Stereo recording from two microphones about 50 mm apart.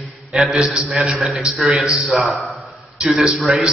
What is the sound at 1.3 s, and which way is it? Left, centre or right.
Speech, centre.